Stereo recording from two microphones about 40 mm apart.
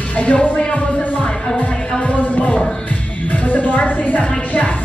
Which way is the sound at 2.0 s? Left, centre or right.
Left.